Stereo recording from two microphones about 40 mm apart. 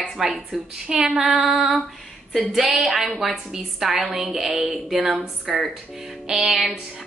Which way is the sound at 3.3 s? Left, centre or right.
Centre.